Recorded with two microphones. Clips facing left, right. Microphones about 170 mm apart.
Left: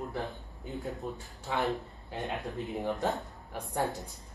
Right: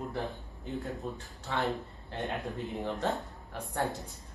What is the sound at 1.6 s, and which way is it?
Speech, centre (ahead or behind).